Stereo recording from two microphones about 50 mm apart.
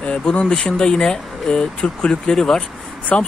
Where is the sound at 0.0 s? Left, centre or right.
Left.